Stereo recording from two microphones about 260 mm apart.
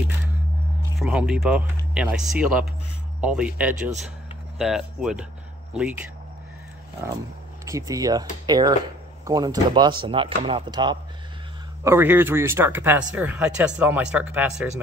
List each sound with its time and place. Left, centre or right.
0.9 s speech: centre
7.6 s speech: centre